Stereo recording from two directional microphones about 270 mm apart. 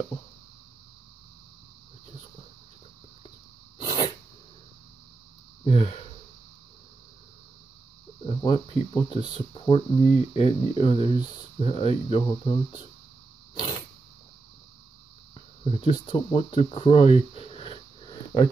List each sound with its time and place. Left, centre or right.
3.7 s sneeze: centre
5.6 s a sound: left
8.4 s speech: centre
15.7 s speech: centre